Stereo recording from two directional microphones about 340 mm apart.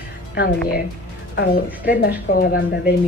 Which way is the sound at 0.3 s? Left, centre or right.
Left.